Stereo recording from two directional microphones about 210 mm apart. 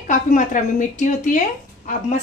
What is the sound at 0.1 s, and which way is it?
A woman's voice, 40° left (ahead or behind).